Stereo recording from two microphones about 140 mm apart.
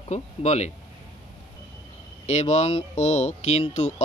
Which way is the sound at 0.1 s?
50° left (ahead or behind).